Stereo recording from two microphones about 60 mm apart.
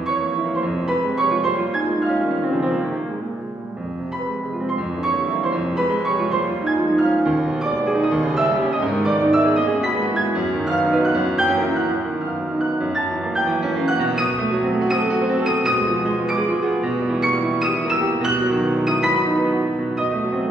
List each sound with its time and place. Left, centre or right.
5.8 s music: centre
7.2 s music: centre
10.8 s music: centre
13.5 s music: centre
18.5 s music: right